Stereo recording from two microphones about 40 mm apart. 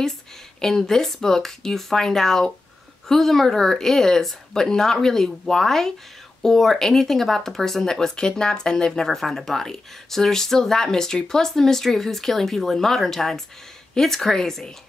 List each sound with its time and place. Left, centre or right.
0.6 s speech: centre